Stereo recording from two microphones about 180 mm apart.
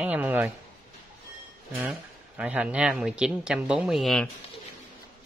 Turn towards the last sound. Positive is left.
turn(degrees=0)  # may be behind; listen again after turning